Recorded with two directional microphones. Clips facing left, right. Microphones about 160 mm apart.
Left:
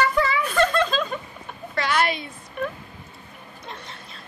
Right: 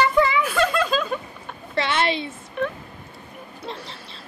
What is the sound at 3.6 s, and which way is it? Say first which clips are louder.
Speech: right 5 dB; 30° right (ahead or behind).